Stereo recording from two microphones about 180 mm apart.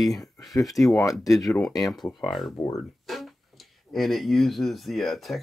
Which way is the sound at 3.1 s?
Centre (ahead or behind).